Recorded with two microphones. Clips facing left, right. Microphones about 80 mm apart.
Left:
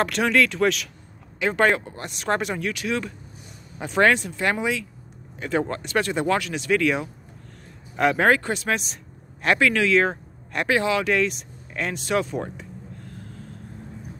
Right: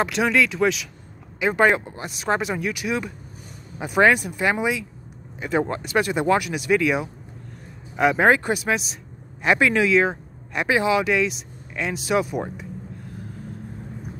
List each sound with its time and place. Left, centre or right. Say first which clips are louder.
0.0 s speech: even; centre
9.9 s speech: right 1 dB; centre